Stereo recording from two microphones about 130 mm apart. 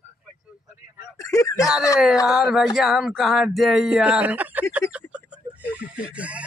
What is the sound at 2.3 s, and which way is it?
Speech, centre (ahead or behind).